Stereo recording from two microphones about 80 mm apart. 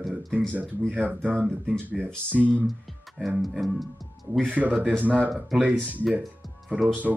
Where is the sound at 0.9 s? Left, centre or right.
Centre.